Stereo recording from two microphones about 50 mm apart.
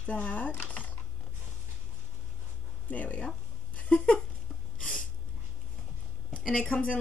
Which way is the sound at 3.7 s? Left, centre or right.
Left.